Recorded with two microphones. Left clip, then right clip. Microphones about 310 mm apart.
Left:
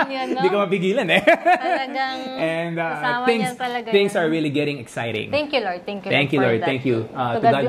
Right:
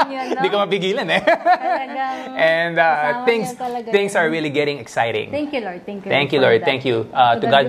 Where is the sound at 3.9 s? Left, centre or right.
Right.